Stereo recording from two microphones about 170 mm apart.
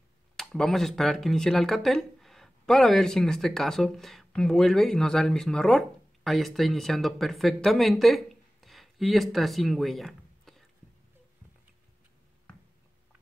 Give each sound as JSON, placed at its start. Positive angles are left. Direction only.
{"t": 0.4, "sound": "speech", "side_deg": 0}